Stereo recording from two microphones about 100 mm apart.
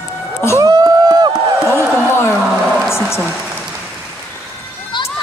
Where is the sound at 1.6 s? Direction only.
25° left (ahead or behind).